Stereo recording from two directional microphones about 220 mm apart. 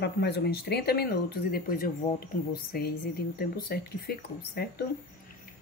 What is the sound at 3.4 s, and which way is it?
Speech, 45° left (ahead or behind).